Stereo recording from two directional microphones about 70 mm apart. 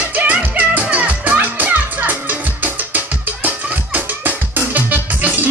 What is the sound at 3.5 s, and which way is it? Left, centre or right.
Music, right.